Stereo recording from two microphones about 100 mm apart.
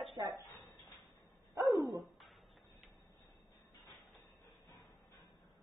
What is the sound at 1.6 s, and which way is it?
Dog, 40° right (ahead or behind).